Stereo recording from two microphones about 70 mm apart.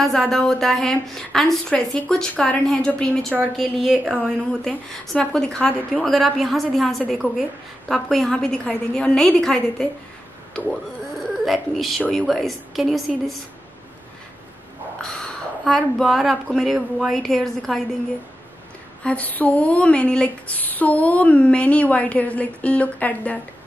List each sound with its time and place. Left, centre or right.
0.0 s a woman's voice: centre
5.0 s a woman's voice: centre
11.4 s a woman's voice: centre
15.0 s a sound: centre
15.7 s a woman's voice: centre
19.0 s a sound: left